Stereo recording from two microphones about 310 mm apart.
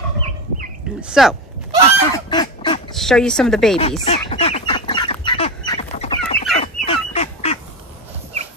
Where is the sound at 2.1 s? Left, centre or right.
Centre.